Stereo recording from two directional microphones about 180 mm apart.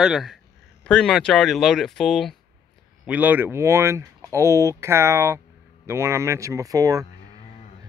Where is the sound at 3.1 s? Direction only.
10° right (ahead or behind).